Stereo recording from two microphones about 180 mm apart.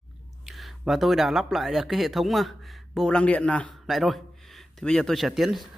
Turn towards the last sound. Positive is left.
turn(degrees=0)  # may be behind; listen again after turning